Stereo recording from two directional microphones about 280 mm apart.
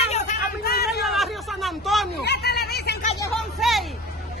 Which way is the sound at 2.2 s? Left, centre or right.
Left.